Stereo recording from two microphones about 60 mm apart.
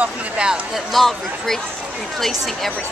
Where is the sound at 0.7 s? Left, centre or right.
Centre.